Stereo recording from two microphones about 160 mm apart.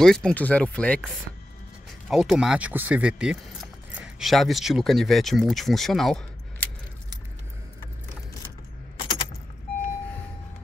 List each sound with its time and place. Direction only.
0.0 s speech: 5° left (ahead or behind)
8.9 s keys jangling: 35° left (ahead or behind)